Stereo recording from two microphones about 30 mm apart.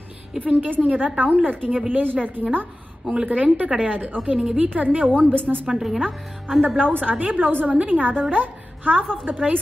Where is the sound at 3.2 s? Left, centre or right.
Right.